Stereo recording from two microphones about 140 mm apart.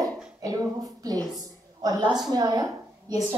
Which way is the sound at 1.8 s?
30° right (ahead or behind).